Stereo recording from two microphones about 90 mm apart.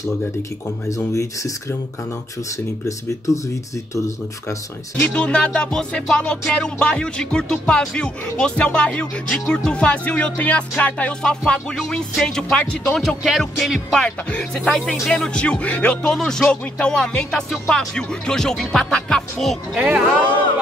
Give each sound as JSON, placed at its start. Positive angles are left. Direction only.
{"t": 0.8, "sound": "speech", "side_deg": 40}
{"t": 5.0, "sound": "music", "side_deg": 10}
{"t": 19.7, "sound": "speech", "side_deg": -15}